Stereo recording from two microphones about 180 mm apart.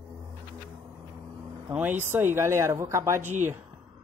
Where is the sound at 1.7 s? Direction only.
10° right (ahead or behind).